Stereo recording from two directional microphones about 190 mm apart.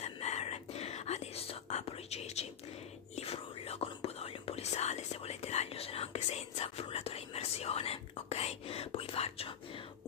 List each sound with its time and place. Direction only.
0.0 s whispering: 35° left (ahead or behind)